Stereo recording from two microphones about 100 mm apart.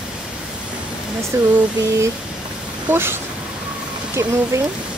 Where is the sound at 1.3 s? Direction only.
30° right (ahead or behind).